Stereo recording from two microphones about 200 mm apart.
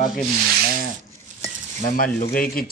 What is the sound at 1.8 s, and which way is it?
Speech, 45° left (ahead or behind).